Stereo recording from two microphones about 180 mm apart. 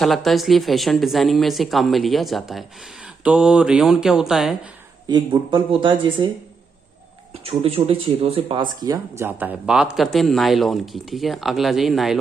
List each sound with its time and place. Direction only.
0.0 s speech: centre (ahead or behind)
5.0 s speech: 25° right (ahead or behind)
7.4 s speech: 30° right (ahead or behind); by 12.2 s centre (ahead or behind)